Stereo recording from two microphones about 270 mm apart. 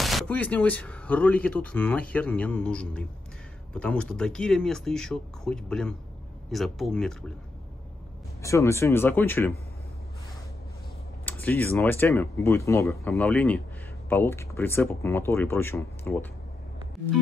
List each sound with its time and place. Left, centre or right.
0.0 s speech: centre
8.4 s speech: centre
11.2 s speech: centre